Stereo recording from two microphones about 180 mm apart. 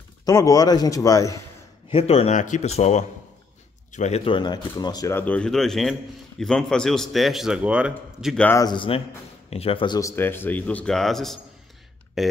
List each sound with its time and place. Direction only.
0.2 s a man's voice: 20° left (ahead or behind)
1.9 s a man's voice: 35° left (ahead or behind); by 8.5 s centre (ahead or behind)
8.5 s a man's voice: 20° left (ahead or behind); by 12.3 s centre (ahead or behind)